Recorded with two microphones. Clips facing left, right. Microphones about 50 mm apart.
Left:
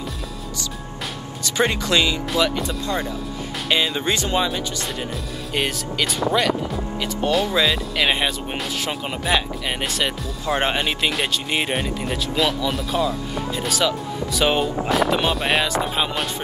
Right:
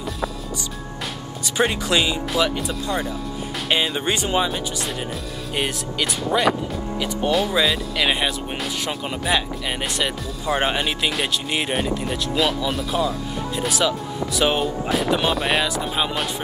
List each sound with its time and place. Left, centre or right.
1.6 s speech: centre
3.7 s speech: centre
5.5 s speech: centre
7.3 s speech: centre